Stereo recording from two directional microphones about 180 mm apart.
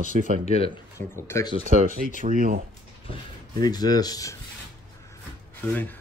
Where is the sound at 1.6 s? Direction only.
50° right (ahead or behind).